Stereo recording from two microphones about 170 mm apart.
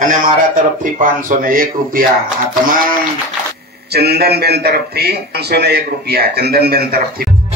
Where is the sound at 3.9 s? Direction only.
70° right (ahead or behind).